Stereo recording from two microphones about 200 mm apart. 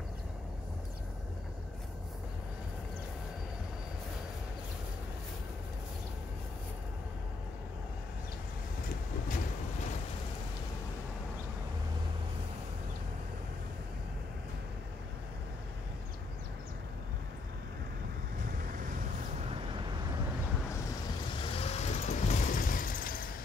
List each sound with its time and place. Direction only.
21.4 s vehicle: 30° left (ahead or behind); by 23.3 s 45° left (ahead or behind)